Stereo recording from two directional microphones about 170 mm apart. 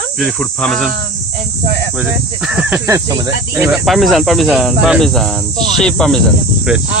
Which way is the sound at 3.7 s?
Centre (ahead or behind).